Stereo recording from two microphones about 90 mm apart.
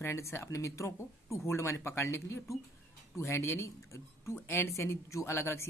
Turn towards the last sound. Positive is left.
turn(degrees=30)  # may be behind; listen again after turning